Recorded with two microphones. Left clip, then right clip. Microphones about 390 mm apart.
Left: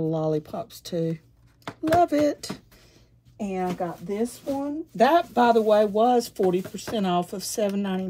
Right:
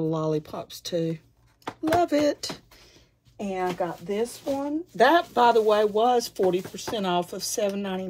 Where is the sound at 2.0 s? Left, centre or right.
Centre.